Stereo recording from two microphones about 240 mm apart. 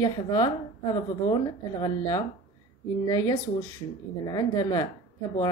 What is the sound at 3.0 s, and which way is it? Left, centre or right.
A woman's voice, centre.